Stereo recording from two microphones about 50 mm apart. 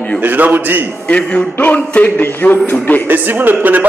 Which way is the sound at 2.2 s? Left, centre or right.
Left.